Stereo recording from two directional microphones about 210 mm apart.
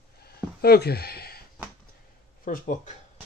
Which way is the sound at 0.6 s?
50° left (ahead or behind).